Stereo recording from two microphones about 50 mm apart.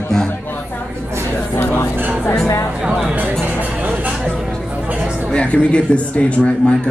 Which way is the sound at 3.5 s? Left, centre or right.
Right.